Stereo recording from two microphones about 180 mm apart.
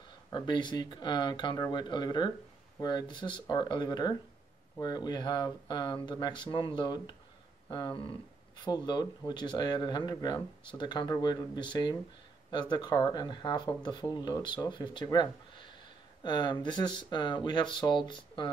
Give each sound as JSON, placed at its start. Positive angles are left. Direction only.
{"t": 0.3, "sound": "speech", "side_deg": 25}